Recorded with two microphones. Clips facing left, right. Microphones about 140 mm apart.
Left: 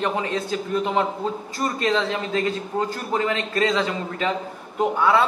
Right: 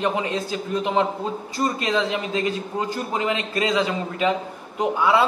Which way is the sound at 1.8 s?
15° right (ahead or behind).